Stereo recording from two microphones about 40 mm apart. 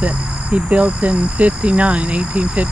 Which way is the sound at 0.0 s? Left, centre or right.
Right.